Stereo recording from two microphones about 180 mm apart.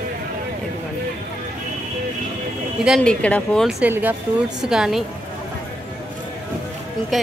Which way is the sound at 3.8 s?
10° right (ahead or behind).